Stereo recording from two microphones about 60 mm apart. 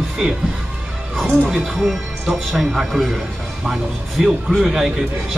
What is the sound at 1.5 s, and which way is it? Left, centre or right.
A man's voice, centre.